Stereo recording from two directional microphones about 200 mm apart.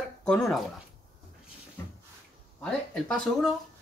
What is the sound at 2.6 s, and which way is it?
Speech, 5° left (ahead or behind).